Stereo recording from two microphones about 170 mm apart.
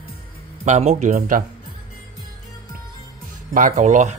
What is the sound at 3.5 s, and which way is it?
Speech, 50° right (ahead or behind).